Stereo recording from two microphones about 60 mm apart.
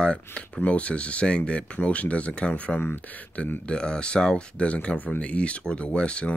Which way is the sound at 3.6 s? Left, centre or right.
Centre.